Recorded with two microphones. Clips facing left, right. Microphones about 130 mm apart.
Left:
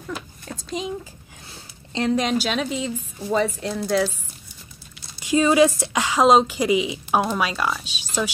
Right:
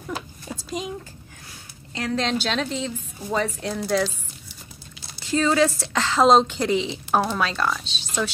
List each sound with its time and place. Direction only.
0.5 s a sound: 5° right (ahead or behind)
2.0 s speech: 20° left (ahead or behind)
2.2 s a woman's voice: 10° left (ahead or behind)
5.2 s a woman's voice: 15° left (ahead or behind)